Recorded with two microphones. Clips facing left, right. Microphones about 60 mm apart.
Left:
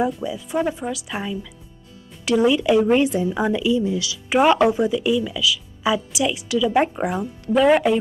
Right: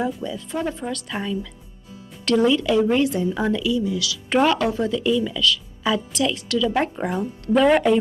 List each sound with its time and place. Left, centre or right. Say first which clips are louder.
0.2 s a woman's voice: left 3 dB; centre